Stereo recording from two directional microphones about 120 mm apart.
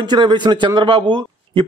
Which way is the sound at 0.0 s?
40° right (ahead or behind).